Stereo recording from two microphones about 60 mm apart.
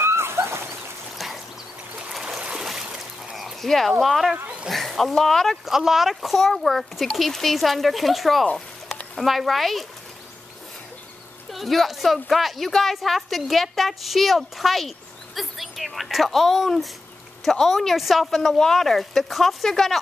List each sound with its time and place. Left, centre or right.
0.0 s a sound: right
1.1 s stream: centre
2.2 s a sound: centre
4.0 s a woman's voice: centre
5.7 s a woman's voice: centre
11.5 s a woman's voice: centre